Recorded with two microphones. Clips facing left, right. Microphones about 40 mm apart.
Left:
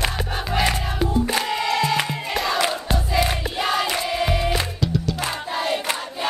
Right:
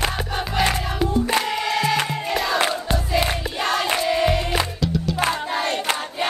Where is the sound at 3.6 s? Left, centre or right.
Centre.